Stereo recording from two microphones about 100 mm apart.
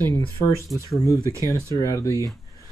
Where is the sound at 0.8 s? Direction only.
35° left (ahead or behind).